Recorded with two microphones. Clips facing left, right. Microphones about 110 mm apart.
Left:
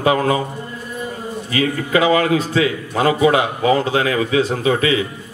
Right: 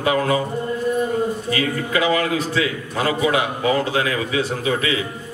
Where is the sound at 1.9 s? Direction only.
25° left (ahead or behind).